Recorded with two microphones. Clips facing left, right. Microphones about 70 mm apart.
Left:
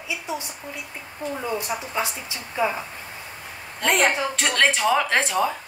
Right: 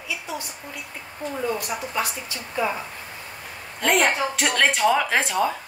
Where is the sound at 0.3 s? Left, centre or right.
Left.